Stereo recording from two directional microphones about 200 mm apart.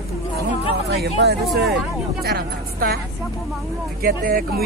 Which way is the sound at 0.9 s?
55° right (ahead or behind).